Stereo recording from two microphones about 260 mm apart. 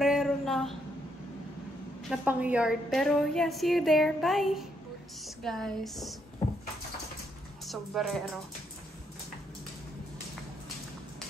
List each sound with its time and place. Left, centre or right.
0.0 s a sound: centre
2.0 s a woman's voice: centre
7.6 s a woman's voice: centre